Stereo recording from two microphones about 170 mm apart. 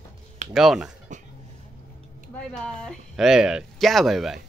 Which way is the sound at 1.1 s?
45° right (ahead or behind).